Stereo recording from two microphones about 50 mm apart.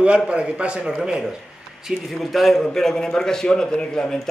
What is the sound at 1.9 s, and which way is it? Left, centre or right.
A man's voice, centre.